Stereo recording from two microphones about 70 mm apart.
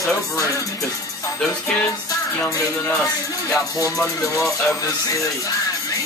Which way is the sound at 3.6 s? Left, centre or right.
Left.